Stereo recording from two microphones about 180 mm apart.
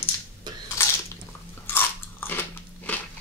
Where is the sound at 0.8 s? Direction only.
15° left (ahead or behind).